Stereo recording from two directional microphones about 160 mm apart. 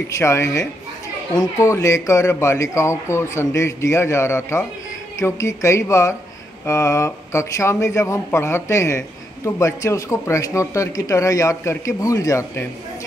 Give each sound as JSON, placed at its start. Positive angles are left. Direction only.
{"t": 0.1, "sound": "speech", "side_deg": 15}